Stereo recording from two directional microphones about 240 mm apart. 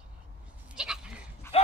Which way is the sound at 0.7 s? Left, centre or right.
Centre.